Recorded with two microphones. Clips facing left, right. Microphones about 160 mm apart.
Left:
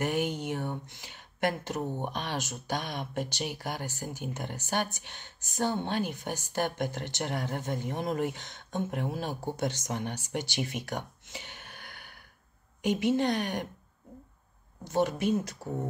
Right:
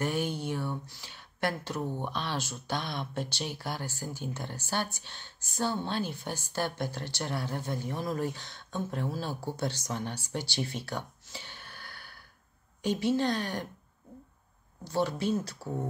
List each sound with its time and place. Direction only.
0.0 s a woman's voice: 15° left (ahead or behind)
14.9 s a woman's voice: 15° left (ahead or behind)